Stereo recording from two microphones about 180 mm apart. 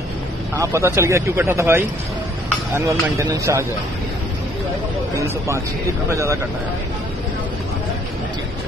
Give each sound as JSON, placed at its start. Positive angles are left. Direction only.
{"t": 0.6, "sound": "speech", "side_deg": -15}
{"t": 5.1, "sound": "speech", "side_deg": -15}